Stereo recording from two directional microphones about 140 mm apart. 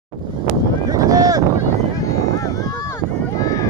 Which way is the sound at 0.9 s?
25° right (ahead or behind).